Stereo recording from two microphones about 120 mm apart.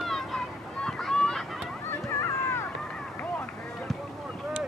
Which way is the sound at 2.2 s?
20° left (ahead or behind).